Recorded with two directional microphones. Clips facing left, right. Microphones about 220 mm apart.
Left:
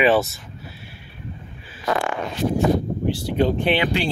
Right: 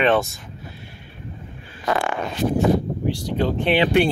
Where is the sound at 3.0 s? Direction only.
5° left (ahead or behind).